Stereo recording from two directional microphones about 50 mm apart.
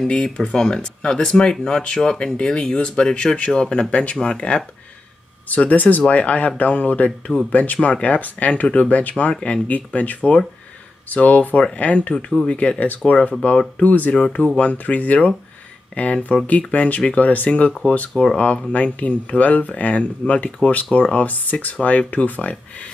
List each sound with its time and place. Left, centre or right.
0.1 s speech: centre
5.5 s speech: left
9.3 s speech: centre
9.7 s speech: left
18.1 s speech: centre
18.7 s speech: left